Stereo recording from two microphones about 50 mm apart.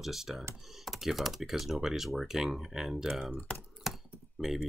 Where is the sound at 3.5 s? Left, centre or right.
Centre.